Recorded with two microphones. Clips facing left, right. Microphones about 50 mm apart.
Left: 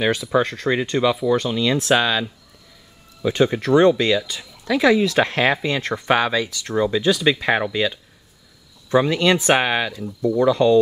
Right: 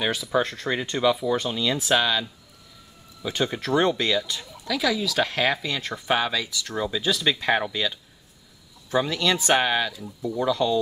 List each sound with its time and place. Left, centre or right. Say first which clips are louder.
0.1 s speech: left 5 dB; centre
3.7 s speech: left 6 dB; centre
4.6 s speech: left 8 dB; left
5.8 s speech: left 7 dB; left
6.0 s speech: left 5 dB; centre